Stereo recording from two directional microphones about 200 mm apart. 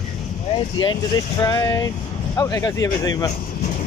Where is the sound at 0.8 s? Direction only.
20° left (ahead or behind).